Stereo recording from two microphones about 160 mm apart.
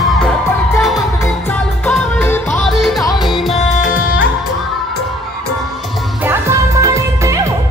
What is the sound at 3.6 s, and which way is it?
Music, 55° left (ahead or behind).